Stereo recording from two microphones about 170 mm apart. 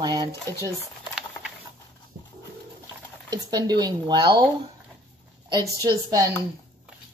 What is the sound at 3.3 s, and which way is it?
Speech, 25° right (ahead or behind).